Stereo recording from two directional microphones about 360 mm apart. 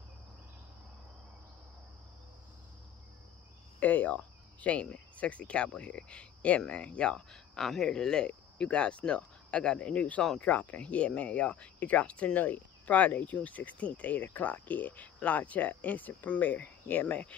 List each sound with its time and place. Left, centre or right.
3.8 s speech: centre